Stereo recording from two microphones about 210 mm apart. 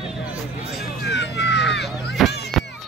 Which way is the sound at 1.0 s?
55° left (ahead or behind).